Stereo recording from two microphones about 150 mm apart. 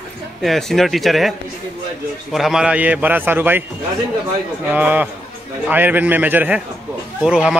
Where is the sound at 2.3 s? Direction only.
Centre (ahead or behind).